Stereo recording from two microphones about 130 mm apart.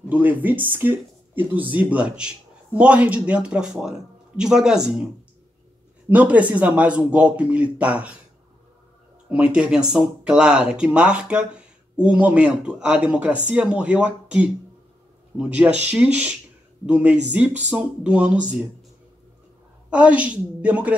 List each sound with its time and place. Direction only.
0.1 s speech: 15° right (ahead or behind)
6.0 s speech: 10° right (ahead or behind)
9.3 s speech: 10° right (ahead or behind)
19.9 s speech: 10° right (ahead or behind)